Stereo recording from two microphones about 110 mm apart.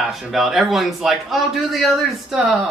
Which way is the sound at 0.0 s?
Centre (ahead or behind).